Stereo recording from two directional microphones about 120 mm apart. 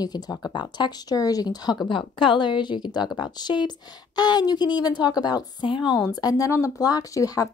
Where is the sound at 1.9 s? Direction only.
45° left (ahead or behind).